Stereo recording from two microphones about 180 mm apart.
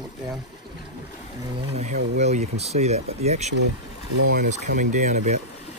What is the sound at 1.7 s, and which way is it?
Speech, 40° right (ahead or behind).